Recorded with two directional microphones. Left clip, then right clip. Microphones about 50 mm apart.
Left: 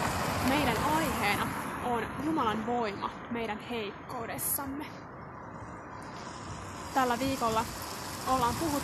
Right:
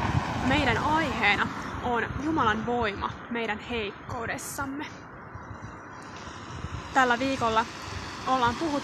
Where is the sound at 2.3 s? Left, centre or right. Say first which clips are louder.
Right 5 dB; right.